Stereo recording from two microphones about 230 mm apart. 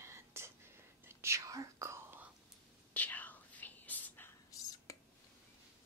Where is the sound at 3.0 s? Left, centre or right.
Centre.